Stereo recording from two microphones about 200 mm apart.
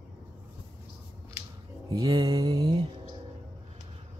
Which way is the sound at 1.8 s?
20° right (ahead or behind).